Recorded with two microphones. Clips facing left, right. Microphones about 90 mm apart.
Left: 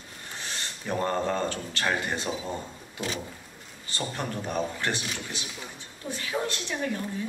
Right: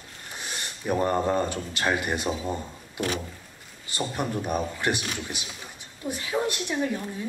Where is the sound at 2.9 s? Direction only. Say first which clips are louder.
Right 4 dB; 60° right (ahead or behind).